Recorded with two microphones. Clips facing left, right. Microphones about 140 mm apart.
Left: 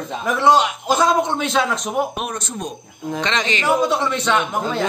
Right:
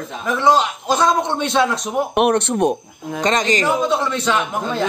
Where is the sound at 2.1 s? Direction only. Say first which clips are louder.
Right 11 dB; 65° right (ahead or behind).